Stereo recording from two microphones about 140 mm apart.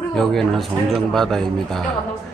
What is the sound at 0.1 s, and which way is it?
A man's voice, 5° left (ahead or behind).